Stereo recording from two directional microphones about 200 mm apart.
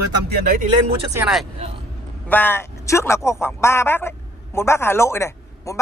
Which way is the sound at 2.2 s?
10° left (ahead or behind).